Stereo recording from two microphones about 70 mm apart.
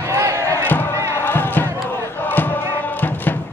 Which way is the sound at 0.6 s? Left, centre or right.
Left.